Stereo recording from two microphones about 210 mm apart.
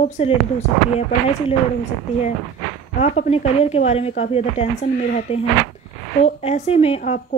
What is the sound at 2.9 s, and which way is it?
A woman's voice, 35° left (ahead or behind).